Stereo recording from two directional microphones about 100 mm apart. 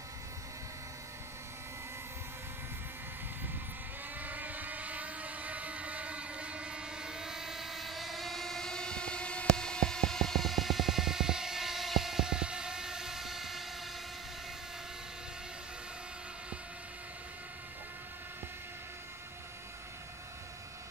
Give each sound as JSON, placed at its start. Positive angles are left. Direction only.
{"t": 4.2, "sound": "vehicle", "side_deg": -15}